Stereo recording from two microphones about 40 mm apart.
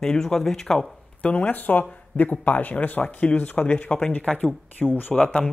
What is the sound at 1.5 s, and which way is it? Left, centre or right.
Speech, left.